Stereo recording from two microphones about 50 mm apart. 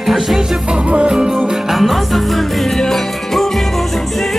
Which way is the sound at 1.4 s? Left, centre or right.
Centre.